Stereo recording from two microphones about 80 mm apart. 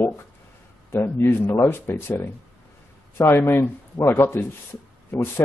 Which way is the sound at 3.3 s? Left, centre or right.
Left.